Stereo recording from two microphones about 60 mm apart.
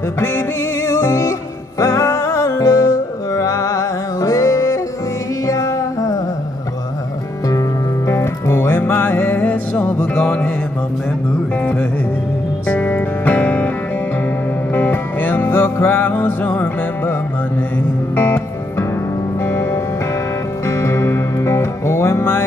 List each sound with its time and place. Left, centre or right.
0.2 s music: left
8.1 s music: left
9.8 s music: centre
11.5 s music: left
14.7 s music: left
19.4 s music: left